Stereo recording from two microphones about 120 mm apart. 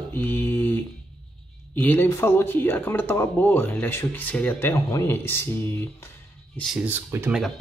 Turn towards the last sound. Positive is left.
turn(degrees=-20)  # may be behind; listen again after turning